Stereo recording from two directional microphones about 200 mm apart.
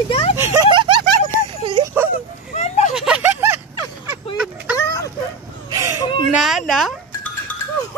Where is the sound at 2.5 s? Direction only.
35° left (ahead or behind).